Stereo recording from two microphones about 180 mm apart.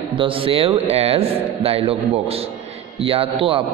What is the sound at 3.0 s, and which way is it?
Speech, 30° right (ahead or behind).